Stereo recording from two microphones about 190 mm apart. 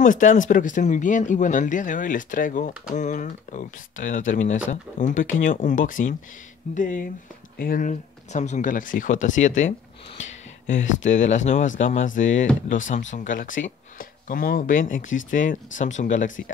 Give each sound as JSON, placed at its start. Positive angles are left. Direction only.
{"t": 0.0, "sound": "speech", "side_deg": 40}